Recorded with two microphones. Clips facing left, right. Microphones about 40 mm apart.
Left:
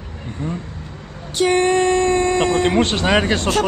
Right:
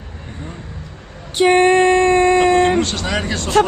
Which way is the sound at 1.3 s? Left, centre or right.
Right.